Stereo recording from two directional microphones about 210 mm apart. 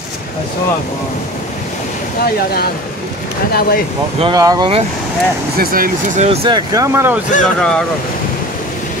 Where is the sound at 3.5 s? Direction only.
45° left (ahead or behind).